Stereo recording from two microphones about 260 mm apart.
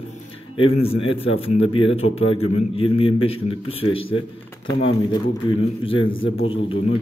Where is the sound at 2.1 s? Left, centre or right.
Left.